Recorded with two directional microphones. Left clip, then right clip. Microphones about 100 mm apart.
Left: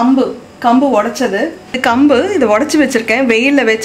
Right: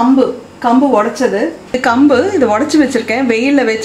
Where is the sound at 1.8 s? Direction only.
20° left (ahead or behind).